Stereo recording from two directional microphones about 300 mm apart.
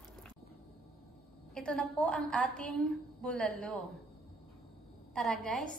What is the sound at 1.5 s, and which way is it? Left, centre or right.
A woman's voice, centre.